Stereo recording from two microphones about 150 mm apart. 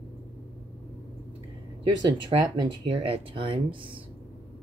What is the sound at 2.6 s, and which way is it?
Speech, 35° right (ahead or behind).